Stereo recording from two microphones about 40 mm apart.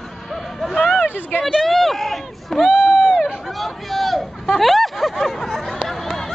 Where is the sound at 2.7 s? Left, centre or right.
Right.